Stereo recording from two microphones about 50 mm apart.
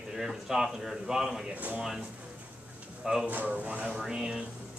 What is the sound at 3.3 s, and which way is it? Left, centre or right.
Speech, right.